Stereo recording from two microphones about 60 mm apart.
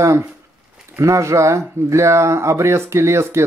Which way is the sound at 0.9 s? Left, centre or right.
Right.